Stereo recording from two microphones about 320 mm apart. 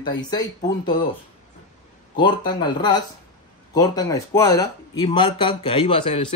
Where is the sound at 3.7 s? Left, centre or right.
Centre.